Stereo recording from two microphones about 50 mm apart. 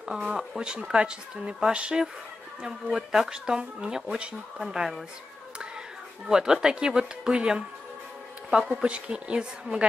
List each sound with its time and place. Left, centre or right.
0.3 s speech: centre
3.1 s speech: centre
6.2 s a woman's voice: centre